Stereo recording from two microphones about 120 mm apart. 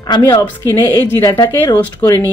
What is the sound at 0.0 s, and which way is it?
Speech, 35° left (ahead or behind).